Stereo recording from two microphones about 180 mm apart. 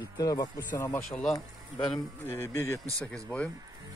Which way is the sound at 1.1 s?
Centre (ahead or behind).